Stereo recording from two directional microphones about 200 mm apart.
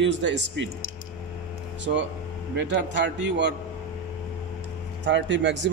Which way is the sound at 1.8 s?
65° right (ahead or behind).